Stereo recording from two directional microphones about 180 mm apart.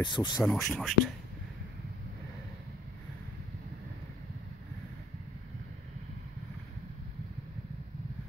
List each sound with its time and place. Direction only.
0.0 s speech: 25° left (ahead or behind)
0.4 s speech: centre (ahead or behind)